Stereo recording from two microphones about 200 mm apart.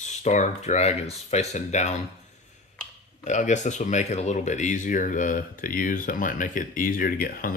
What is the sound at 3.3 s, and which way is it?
Speech, 35° left (ahead or behind).